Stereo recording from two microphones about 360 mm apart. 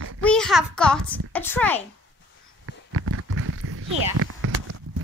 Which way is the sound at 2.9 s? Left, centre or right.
Right.